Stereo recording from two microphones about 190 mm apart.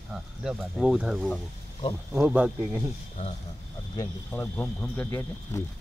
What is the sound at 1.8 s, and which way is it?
Speech, 30° left (ahead or behind).